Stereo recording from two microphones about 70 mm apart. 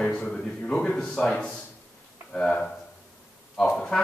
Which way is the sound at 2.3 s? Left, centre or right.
Centre.